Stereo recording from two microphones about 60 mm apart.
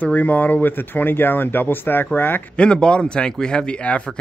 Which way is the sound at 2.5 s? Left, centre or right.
Centre.